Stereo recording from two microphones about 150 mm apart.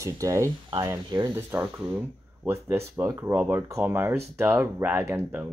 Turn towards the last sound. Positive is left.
turn(degrees=-15)  # may be behind; listen again after turning